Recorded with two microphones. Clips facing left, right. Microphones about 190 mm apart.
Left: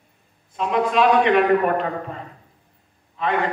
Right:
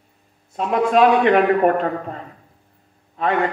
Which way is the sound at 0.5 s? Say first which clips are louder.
Right 3 dB; 45° right (ahead or behind).